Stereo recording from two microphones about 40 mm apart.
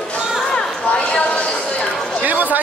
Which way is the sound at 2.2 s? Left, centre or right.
Right.